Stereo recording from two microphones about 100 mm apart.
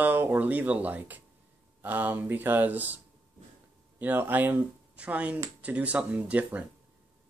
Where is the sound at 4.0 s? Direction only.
20° right (ahead or behind).